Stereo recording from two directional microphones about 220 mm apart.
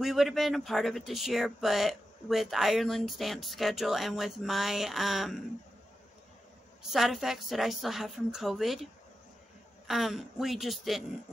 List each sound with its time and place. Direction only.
0.0 s speech: centre (ahead or behind)
6.9 s speech: centre (ahead or behind)
9.8 s speech: centre (ahead or behind)